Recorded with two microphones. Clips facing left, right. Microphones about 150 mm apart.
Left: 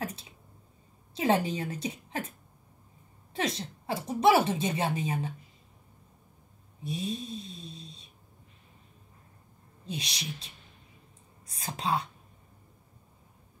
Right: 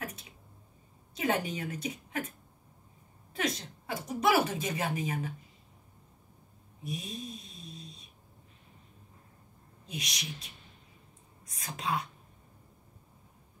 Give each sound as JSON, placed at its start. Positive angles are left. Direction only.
{"t": 1.1, "sound": "a woman's voice", "side_deg": 30}
{"t": 3.3, "sound": "a woman's voice", "side_deg": 30}
{"t": 6.8, "sound": "a sound", "side_deg": 30}
{"t": 9.8, "sound": "a woman's voice", "side_deg": 30}